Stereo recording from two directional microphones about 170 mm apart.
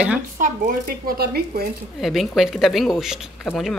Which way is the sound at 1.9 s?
Centre (ahead or behind).